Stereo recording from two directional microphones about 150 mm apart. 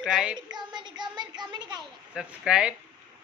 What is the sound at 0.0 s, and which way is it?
Speech, 5° right (ahead or behind).